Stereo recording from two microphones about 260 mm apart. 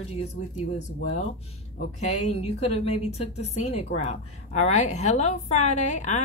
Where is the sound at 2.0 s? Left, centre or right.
Left.